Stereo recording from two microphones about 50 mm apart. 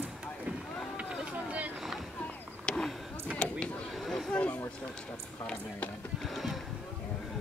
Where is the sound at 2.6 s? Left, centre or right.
Centre.